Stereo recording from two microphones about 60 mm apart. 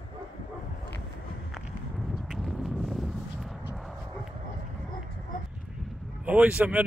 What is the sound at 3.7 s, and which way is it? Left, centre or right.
Dog, centre.